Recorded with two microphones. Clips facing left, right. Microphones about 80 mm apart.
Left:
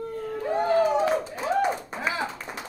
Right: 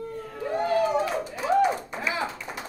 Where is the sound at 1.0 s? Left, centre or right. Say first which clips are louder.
Left 3 dB; left.